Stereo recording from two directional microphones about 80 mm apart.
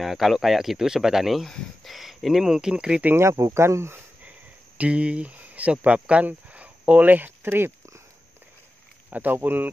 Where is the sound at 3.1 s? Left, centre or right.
Right.